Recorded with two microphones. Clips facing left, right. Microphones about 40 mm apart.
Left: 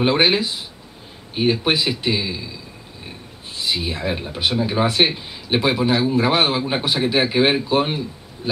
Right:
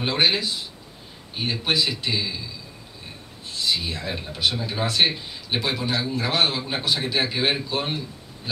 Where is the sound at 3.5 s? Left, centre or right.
Centre.